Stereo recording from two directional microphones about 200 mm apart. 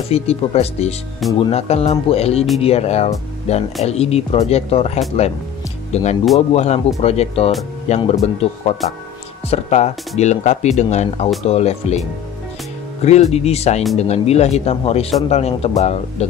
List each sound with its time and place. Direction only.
0.1 s speech: 30° left (ahead or behind)
13.0 s speech: 35° left (ahead or behind)